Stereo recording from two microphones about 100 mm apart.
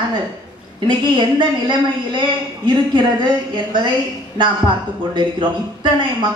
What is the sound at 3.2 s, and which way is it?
A man's voice, 50° right (ahead or behind).